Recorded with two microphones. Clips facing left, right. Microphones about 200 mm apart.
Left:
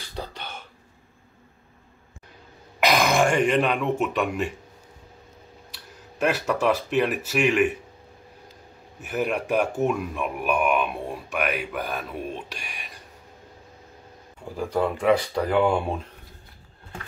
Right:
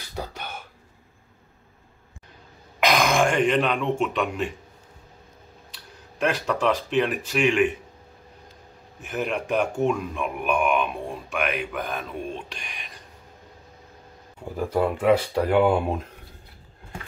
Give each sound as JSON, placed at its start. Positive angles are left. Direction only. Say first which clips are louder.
{"t": 0.1, "sound": "a sound", "louder": "right 2 dB", "side_deg": -10}
{"t": 2.8, "sound": "speech", "louder": "even", "side_deg": 5}
{"t": 5.7, "sound": "speech", "louder": "left 1 dB", "side_deg": 5}
{"t": 9.0, "sound": "speech", "louder": "left 2 dB", "side_deg": 5}
{"t": 14.6, "sound": "speech", "louder": "right 1 dB", "side_deg": -5}